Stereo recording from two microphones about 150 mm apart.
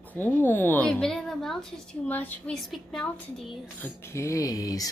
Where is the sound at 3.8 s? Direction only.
20° left (ahead or behind).